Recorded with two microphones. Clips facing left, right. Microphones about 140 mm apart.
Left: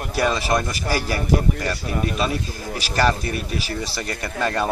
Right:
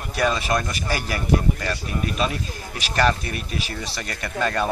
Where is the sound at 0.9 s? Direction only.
35° left (ahead or behind).